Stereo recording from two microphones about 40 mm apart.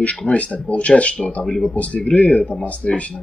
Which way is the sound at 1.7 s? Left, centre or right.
Left.